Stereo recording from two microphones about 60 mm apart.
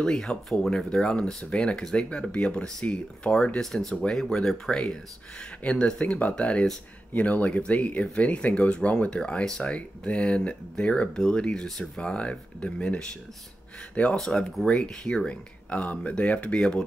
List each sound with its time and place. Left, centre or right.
0.0 s speech: centre
12.0 s speech: centre
14.1 s speech: centre